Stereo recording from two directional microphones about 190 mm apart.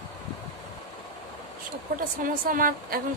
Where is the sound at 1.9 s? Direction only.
50° right (ahead or behind).